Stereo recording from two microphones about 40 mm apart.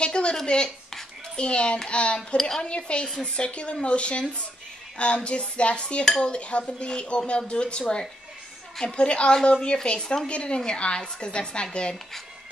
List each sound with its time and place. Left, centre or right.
0.0 s a sound: left
1.3 s speech: left
2.1 s a woman's voice: centre
2.6 s speech: left
6.0 s a woman's voice: centre